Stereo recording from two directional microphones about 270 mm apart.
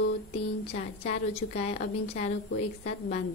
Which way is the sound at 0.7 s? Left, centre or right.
Left.